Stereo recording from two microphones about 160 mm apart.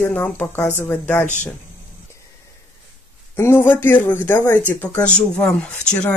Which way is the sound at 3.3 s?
15° left (ahead or behind).